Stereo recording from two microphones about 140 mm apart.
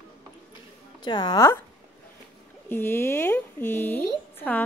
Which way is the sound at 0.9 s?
35° left (ahead or behind).